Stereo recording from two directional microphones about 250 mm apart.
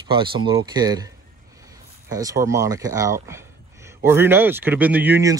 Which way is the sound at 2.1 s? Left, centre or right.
Centre.